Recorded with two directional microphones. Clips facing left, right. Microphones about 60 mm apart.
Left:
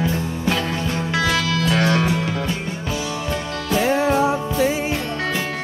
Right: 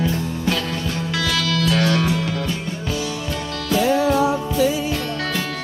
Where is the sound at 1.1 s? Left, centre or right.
Left.